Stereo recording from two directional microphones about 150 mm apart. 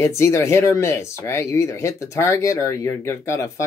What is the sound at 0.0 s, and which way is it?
Speech, 15° left (ahead or behind).